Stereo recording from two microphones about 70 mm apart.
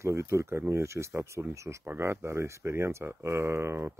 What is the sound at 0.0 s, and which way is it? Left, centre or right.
Speech, right.